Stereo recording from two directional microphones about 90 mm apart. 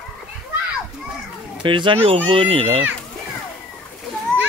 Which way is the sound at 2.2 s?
90° right.